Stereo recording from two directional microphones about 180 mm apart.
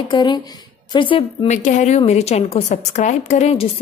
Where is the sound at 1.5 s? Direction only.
45° left (ahead or behind).